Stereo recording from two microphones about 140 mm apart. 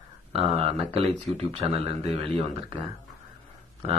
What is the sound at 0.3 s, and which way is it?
Speech, 40° right (ahead or behind).